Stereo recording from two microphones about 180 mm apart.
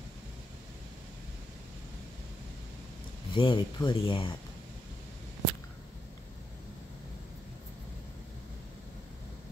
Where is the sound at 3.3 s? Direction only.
25° left (ahead or behind).